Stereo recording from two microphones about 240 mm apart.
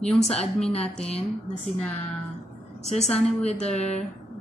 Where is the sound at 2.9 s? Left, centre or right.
Left.